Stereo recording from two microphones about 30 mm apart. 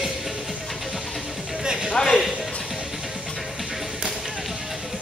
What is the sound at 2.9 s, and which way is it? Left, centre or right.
Music, centre.